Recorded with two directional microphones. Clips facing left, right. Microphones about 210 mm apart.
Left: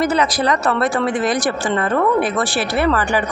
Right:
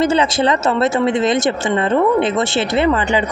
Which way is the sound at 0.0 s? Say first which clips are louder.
Right 3 dB; 25° right (ahead or behind).